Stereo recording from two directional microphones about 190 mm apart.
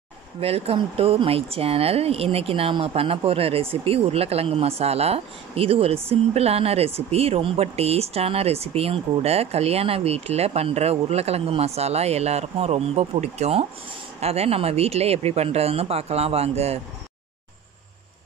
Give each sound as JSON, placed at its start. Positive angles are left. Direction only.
{"t": 0.4, "sound": "speech", "side_deg": -30}